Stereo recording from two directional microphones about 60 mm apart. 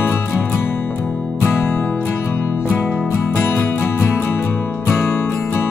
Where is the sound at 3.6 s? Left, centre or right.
Left.